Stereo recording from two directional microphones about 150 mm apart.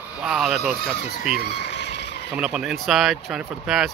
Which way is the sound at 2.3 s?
5° right (ahead or behind).